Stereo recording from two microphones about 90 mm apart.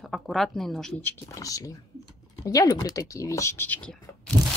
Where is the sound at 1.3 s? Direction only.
40° left (ahead or behind).